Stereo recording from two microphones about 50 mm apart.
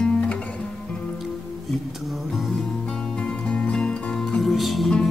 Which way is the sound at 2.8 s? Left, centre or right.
Centre.